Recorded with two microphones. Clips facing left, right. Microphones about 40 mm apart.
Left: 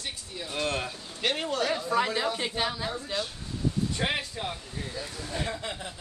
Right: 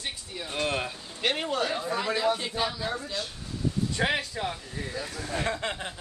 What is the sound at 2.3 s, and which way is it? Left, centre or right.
Speech, left.